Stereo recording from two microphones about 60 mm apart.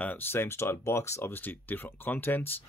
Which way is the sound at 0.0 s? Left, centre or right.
Left.